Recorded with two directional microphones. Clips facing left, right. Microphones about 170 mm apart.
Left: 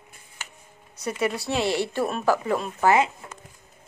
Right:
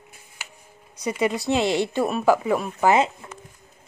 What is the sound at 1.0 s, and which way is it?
A woman's voice, 15° right (ahead or behind).